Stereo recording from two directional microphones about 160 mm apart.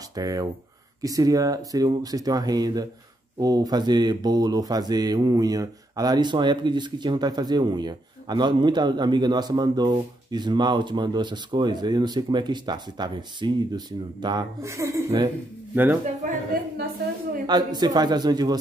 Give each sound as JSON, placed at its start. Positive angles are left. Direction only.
{"t": 0.1, "sound": "speech", "side_deg": -25}
{"t": 16.5, "sound": "a woman's voice", "side_deg": -65}
{"t": 17.5, "sound": "speech", "side_deg": -25}